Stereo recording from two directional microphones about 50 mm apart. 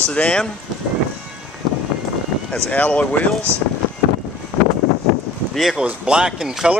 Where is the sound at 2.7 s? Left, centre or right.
Left.